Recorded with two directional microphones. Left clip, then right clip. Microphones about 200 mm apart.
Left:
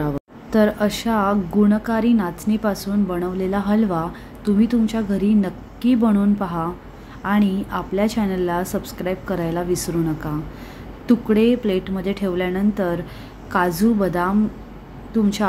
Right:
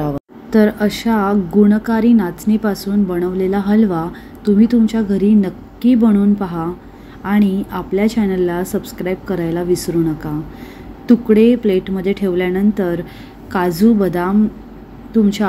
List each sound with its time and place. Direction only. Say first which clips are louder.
0.0 s speech: right 3 dB; 5° right (ahead or behind)